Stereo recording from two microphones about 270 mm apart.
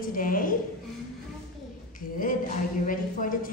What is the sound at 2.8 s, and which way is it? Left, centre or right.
Speech, left.